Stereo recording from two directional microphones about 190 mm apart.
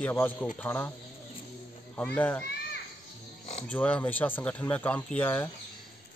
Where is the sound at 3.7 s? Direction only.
10° left (ahead or behind).